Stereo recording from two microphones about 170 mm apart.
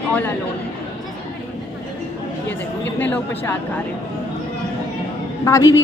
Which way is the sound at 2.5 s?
10° left (ahead or behind).